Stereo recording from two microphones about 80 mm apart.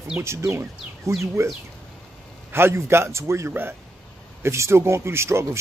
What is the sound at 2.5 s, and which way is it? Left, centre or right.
Speech, right.